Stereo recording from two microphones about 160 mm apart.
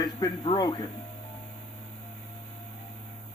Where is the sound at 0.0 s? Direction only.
30° left (ahead or behind).